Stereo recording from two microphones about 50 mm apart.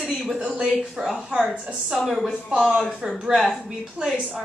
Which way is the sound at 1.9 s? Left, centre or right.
Centre.